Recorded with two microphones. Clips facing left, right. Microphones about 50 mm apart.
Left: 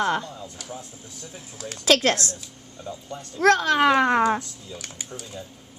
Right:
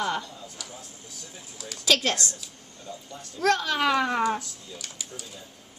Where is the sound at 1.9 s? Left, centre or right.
Left.